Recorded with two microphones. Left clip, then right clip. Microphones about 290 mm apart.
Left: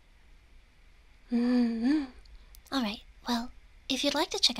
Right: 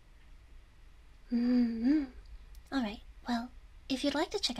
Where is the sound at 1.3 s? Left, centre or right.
Centre.